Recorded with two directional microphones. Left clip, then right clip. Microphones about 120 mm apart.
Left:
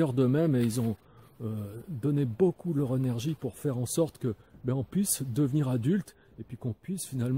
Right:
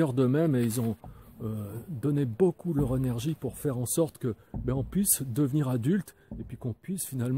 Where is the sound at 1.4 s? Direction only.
30° right (ahead or behind).